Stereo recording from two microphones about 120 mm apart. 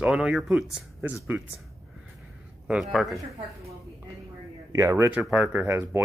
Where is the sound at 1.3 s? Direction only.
15° right (ahead or behind).